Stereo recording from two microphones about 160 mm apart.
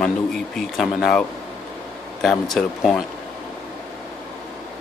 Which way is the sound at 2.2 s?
Centre (ahead or behind).